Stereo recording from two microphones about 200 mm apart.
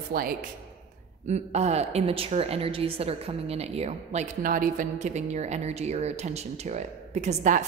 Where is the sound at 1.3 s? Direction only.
35° right (ahead or behind).